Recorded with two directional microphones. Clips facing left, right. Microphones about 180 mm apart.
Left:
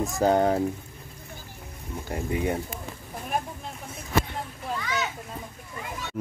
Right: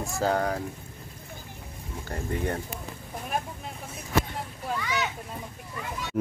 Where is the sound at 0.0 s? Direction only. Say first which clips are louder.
Left 5 dB; 20° left (ahead or behind).